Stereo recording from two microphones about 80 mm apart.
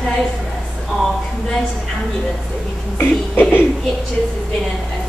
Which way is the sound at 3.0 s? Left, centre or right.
Left.